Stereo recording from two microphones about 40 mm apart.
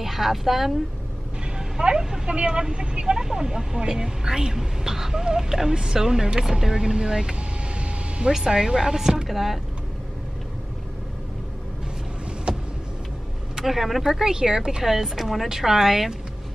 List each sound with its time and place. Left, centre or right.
0.0 s a woman's voice: centre
1.6 s speech: centre
12.5 s vehicle: right
13.7 s speech: centre
14.8 s speech: centre